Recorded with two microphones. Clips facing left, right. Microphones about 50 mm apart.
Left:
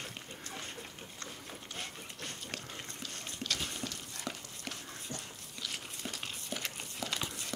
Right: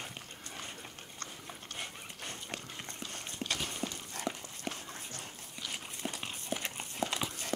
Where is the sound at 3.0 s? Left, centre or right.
Right.